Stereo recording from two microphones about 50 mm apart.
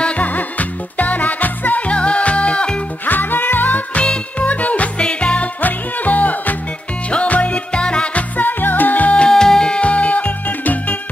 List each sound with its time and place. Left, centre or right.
0.0 s music: left
3.1 s music: left
4.0 s music: left
5.6 s music: left
9.2 s music: centre; by 11.0 s left